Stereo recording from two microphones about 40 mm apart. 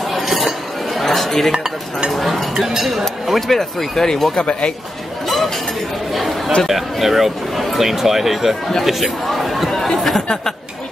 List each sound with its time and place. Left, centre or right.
0.1 s dishes: centre
1.5 s dishes: centre
2.0 s speech: centre
3.4 s speech: centre
4.4 s speech: left
6.1 s chatter: centre
6.7 s speech: centre
9.7 s chatter: centre
9.9 s a sound: centre